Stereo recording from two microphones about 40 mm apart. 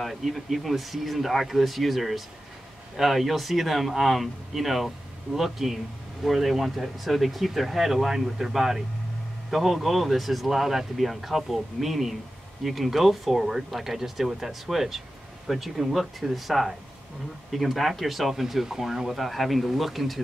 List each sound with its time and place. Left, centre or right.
0.0 s speech: centre